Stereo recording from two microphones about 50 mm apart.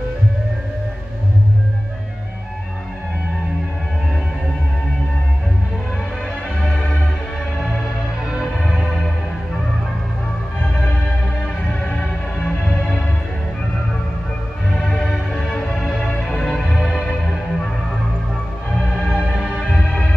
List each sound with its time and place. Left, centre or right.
11.8 s music: left
14.8 s music: centre
19.0 s music: centre
19.4 s music: centre